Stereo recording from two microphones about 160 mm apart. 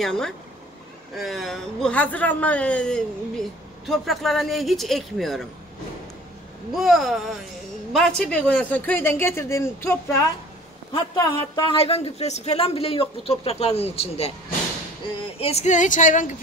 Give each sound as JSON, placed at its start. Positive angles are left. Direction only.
{"t": 0.0, "sound": "a man's voice", "side_deg": 5}
{"t": 6.7, "sound": "a man's voice", "side_deg": 0}
{"t": 8.2, "sound": "a man's voice", "side_deg": 5}
{"t": 11.7, "sound": "speech", "side_deg": 40}
{"t": 15.3, "sound": "speech", "side_deg": 40}